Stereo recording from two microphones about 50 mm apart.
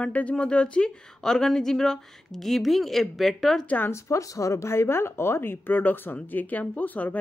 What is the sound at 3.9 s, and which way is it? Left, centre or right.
Speech, left.